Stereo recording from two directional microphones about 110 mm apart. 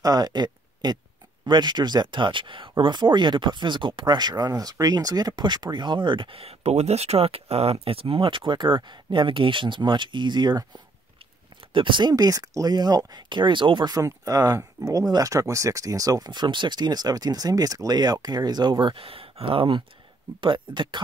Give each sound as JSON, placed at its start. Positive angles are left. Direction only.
{"t": 0.0, "sound": "speech", "side_deg": -35}
{"t": 11.7, "sound": "speech", "side_deg": -50}